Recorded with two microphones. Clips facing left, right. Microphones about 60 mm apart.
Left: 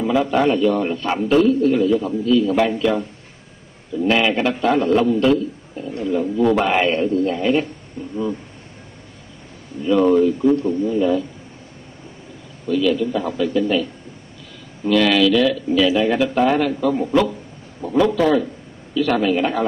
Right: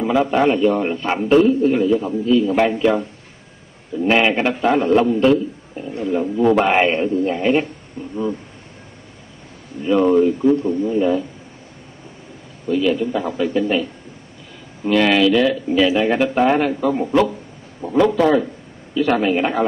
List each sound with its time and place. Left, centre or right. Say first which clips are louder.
0.0 s speech: right 1 dB; centre
9.8 s speech: even; right
12.6 s speech: even; right